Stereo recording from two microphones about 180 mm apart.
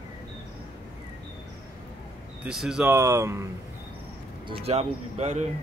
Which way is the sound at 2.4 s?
5° right (ahead or behind).